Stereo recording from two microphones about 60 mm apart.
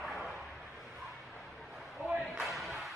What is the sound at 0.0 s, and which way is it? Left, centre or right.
Bow-wow, centre.